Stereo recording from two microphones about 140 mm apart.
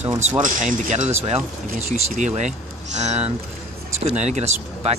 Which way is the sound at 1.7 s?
60° right (ahead or behind).